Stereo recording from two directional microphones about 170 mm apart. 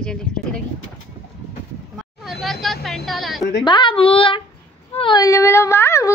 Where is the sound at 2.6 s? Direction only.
Centre (ahead or behind).